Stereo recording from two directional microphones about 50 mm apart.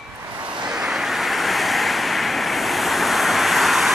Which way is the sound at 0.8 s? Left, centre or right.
Centre.